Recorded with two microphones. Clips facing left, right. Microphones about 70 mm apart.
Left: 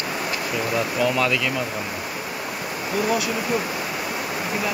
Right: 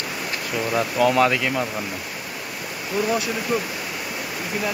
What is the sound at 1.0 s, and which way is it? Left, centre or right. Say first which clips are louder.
Speech: right 5 dB; right.